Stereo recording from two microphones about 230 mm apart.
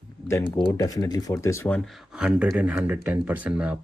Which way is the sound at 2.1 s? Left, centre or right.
Centre.